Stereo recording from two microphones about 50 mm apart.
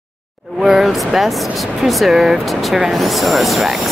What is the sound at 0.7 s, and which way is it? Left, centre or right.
Speech, centre.